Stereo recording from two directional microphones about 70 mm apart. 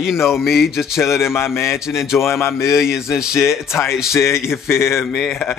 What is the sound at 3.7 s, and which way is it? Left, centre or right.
Speech, left.